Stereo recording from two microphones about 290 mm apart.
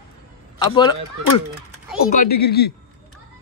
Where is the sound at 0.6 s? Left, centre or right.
Centre.